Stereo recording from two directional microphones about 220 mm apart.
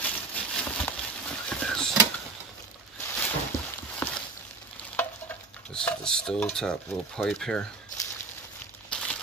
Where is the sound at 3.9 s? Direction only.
5° left (ahead or behind).